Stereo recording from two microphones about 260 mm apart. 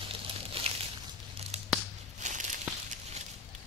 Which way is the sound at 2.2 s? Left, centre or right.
Right.